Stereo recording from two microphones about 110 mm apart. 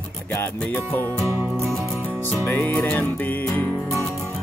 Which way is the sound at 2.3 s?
20° left (ahead or behind).